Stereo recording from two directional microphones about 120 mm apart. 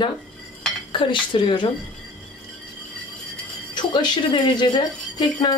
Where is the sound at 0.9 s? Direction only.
45° left (ahead or behind).